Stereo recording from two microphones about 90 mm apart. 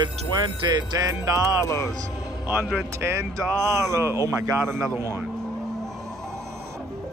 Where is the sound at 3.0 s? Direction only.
30° right (ahead or behind).